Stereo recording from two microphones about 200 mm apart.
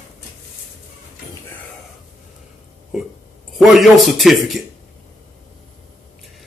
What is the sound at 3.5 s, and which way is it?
Mantra, centre (ahead or behind).